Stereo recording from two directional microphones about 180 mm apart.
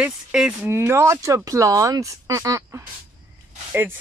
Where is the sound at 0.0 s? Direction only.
5° right (ahead or behind).